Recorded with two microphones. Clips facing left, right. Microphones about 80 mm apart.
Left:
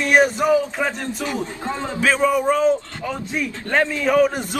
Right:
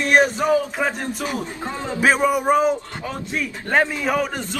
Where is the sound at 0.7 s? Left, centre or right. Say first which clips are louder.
Even; centre.